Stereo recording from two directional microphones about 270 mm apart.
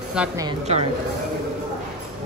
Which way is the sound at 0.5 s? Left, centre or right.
Right.